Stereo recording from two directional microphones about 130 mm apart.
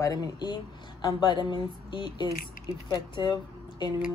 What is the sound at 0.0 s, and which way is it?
Speech, 30° left (ahead or behind).